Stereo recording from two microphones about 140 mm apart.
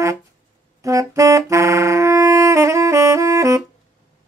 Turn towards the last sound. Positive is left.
turn(degrees=-20)  # may be behind; listen again after turning